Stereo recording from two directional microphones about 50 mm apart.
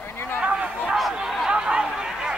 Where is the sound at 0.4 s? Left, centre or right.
Right.